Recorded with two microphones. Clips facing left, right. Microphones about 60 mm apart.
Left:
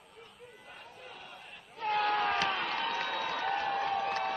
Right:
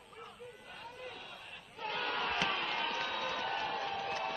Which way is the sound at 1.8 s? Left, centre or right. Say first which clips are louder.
Left 7 dB; left.